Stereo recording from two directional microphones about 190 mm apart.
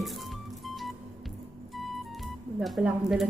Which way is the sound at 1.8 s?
Centre (ahead or behind).